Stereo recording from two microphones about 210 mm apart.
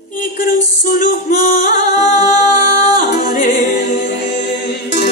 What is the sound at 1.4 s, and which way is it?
Music, 40° left (ahead or behind).